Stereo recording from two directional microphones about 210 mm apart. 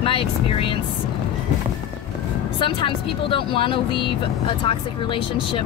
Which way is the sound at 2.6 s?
25° left (ahead or behind).